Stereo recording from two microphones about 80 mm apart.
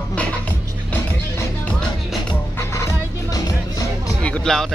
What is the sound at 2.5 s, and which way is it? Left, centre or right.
Music, left.